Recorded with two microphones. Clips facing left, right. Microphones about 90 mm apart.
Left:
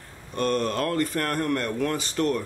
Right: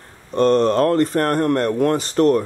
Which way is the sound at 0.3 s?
35° right (ahead or behind).